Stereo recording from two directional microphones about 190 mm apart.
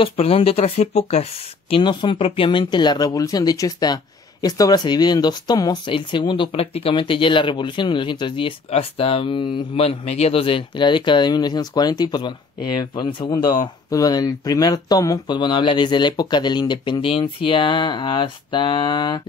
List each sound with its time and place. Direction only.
0.0 s speech: 30° left (ahead or behind)